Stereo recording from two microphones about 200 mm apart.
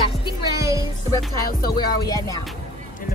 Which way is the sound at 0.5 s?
15° right (ahead or behind).